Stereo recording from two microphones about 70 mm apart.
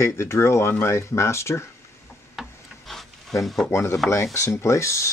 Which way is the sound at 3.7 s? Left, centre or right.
Left.